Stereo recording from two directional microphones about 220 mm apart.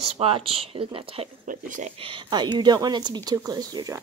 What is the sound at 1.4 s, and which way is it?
Speech, 35° right (ahead or behind).